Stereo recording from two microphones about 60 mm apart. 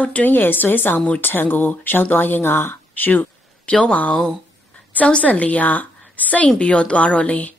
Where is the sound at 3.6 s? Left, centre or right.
Centre.